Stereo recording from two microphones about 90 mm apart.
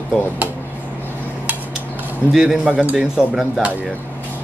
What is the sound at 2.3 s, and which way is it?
A man's voice, 5° right (ahead or behind).